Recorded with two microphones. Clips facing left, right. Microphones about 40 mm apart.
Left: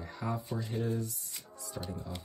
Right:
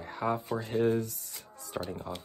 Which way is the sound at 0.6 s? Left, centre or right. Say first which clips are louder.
Right 7 dB; right.